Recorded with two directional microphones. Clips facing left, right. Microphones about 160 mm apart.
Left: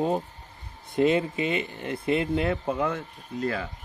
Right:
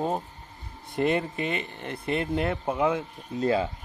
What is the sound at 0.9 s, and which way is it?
Speech, centre (ahead or behind).